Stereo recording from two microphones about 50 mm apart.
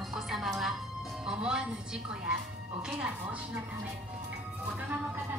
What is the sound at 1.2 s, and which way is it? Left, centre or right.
A woman's voice, centre.